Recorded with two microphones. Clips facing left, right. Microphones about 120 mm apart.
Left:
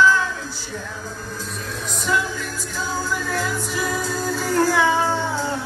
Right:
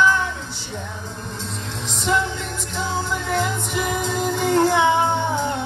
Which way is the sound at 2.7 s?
20° right (ahead or behind).